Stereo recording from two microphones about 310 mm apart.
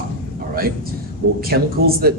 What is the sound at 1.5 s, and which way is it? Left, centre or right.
Speech, right.